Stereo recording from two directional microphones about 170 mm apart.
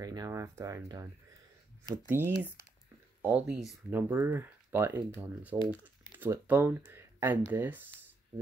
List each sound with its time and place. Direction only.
0.0 s speech: 20° right (ahead or behind)
2.0 s speech: 15° right (ahead or behind)